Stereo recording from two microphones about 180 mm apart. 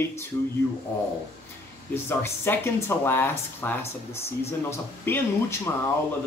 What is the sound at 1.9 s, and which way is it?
Speech, 15° left (ahead or behind).